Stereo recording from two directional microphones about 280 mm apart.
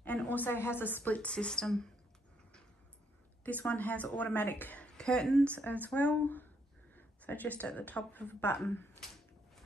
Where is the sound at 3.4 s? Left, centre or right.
Centre.